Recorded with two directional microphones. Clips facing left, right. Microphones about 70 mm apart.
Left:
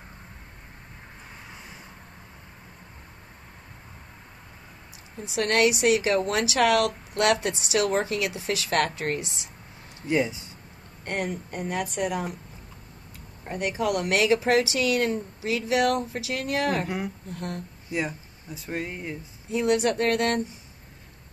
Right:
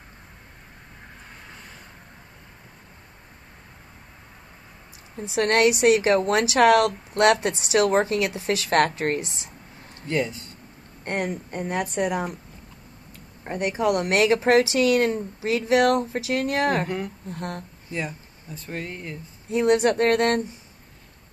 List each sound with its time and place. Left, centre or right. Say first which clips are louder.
5.2 s a woman's voice: right 3 dB; right
10.0 s speech: left 1 dB; centre
11.8 s a woman's voice: right 4 dB; right
13.4 s a woman's voice: right 3 dB; right
17.8 s speech: left 2 dB; centre
19.5 s speech: right 4 dB; right